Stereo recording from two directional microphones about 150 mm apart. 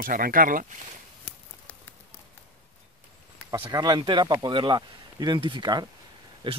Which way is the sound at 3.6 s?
30° right (ahead or behind).